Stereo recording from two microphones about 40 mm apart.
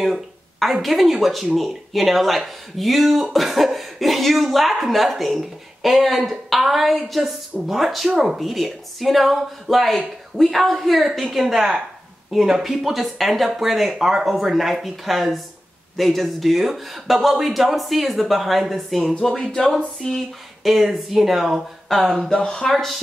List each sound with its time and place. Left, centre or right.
0.1 s a sound: centre
0.8 s a woman's voice: centre
20.6 s speech: centre
21.8 s speech: centre
22.3 s speech: centre